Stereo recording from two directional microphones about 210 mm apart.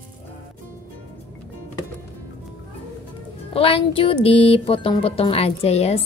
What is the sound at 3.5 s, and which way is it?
Speech, 25° left (ahead or behind).